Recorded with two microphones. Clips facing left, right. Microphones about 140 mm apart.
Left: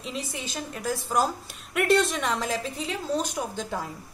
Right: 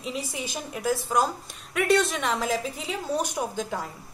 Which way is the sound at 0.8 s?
Centre (ahead or behind).